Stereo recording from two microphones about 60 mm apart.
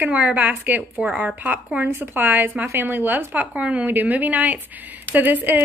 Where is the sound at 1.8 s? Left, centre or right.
Right.